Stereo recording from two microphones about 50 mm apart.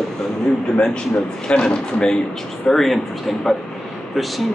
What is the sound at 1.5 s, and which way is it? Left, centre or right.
Speech, centre.